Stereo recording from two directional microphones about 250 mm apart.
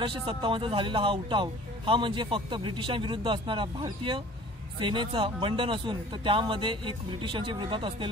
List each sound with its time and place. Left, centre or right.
0.0 s speech: centre